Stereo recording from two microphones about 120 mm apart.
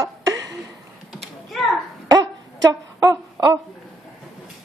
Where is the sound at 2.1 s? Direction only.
30° right (ahead or behind).